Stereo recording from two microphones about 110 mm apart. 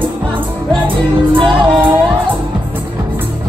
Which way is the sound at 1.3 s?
50° right (ahead or behind).